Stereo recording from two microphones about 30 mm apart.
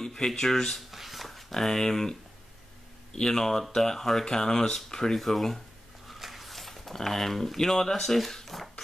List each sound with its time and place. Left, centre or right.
0.0 s speech: centre
0.9 s dog: centre
1.5 s speech: centre
3.2 s speech: centre
6.0 s speech: centre
8.5 s a sound: centre